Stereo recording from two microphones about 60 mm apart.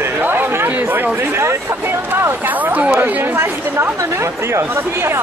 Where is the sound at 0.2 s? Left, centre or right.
Right.